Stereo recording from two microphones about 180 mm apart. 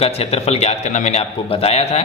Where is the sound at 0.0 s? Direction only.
35° left (ahead or behind).